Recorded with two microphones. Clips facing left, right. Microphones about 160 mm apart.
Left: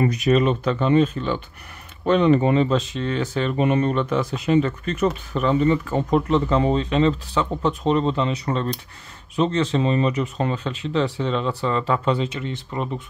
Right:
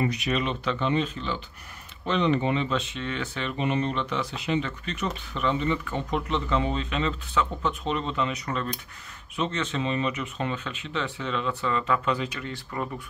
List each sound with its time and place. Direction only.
0.0 s speech: 45° left (ahead or behind); by 13.0 s 20° left (ahead or behind)